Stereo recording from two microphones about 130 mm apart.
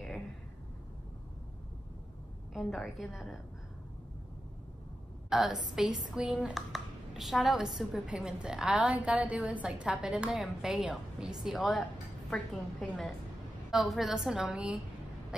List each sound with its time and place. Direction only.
2.5 s a woman's voice: centre (ahead or behind)
5.3 s a woman's voice: 5° right (ahead or behind)
12.8 s a woman's voice: 5° left (ahead or behind)